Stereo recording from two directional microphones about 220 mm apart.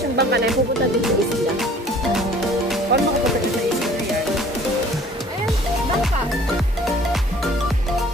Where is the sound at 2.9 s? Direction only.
50° right (ahead or behind).